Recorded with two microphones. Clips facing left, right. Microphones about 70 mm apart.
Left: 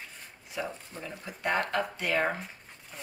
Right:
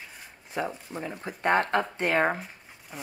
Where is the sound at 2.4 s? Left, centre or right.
Centre.